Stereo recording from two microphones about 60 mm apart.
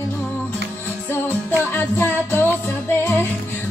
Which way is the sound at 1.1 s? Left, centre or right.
Left.